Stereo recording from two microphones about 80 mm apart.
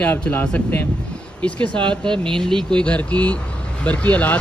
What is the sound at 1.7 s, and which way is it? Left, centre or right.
Speech, right.